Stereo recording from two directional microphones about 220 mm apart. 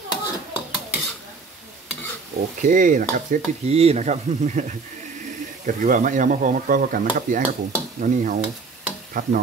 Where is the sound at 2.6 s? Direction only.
35° right (ahead or behind).